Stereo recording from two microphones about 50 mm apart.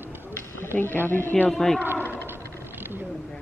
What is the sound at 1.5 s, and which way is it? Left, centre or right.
Speech, centre.